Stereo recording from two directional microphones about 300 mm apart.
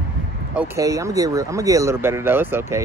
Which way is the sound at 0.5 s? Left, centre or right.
Centre.